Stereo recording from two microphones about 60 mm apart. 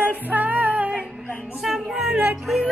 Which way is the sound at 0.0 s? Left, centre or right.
Right.